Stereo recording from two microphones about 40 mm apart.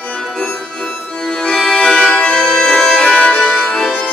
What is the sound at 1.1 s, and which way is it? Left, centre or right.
Accordion, left.